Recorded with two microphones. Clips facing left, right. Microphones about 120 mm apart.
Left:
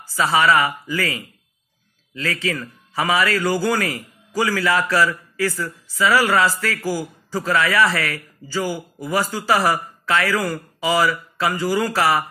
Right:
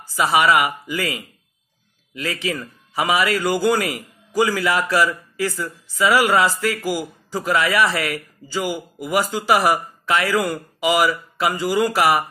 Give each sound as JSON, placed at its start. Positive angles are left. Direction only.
{"t": 0.0, "sound": "a man's voice", "side_deg": -15}